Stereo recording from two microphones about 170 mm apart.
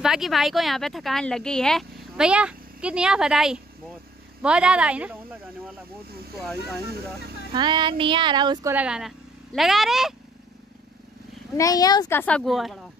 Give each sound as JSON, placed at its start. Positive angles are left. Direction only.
{"t": 0.0, "sound": "speech", "side_deg": 0}
{"t": 6.4, "sound": "speech", "side_deg": 5}
{"t": 7.5, "sound": "speech", "side_deg": -25}
{"t": 8.7, "sound": "speech", "side_deg": -5}
{"t": 11.5, "sound": "speech", "side_deg": 20}
{"t": 12.2, "sound": "speech", "side_deg": 5}